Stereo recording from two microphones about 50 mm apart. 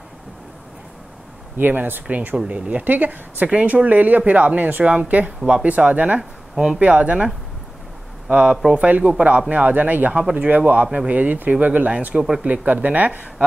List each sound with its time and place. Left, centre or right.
1.6 s speech: right
2.3 s speech: right
2.8 s speech: right
8.3 s speech: right